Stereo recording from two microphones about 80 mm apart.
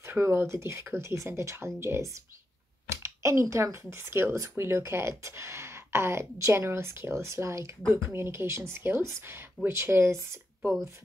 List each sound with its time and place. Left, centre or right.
0.0 s speech: right
10.6 s speech: centre